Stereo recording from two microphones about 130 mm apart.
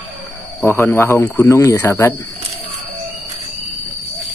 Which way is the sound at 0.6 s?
15° left (ahead or behind).